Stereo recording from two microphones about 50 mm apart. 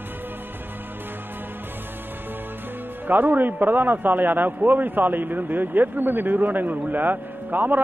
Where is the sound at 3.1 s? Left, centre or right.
Right.